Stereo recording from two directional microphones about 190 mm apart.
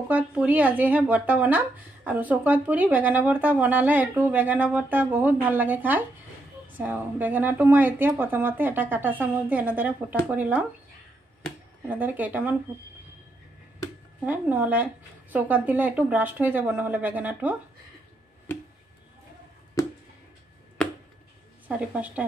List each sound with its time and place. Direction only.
0.1 s speech: 10° right (ahead or behind)
11.9 s speech: 10° right (ahead or behind)
14.2 s speech: 10° right (ahead or behind)
18.5 s a sound: 10° left (ahead or behind)
21.6 s speech: 5° right (ahead or behind)